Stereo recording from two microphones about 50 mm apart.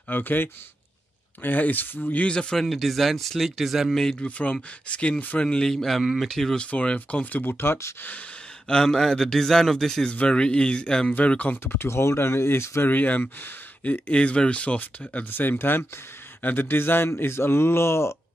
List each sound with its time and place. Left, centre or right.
0.1 s speech: left
2.2 s a man's voice: centre
2.6 s speech: centre
4.2 s a man's voice: left
5.7 s speech: centre
6.5 s speech: left
7.4 s speech: left
8.6 s a man's voice: centre
10.2 s speech: centre
11.1 s speech: left
11.6 s speech: left
12.8 s speech: left
15.3 s speech: left